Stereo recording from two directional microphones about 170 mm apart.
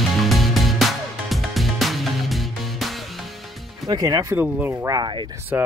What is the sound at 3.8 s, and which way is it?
Speech, 20° right (ahead or behind).